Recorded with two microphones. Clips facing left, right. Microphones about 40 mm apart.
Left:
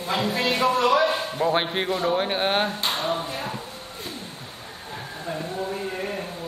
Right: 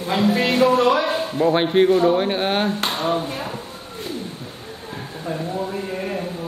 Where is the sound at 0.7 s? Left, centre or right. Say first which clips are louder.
Right 3 dB; right.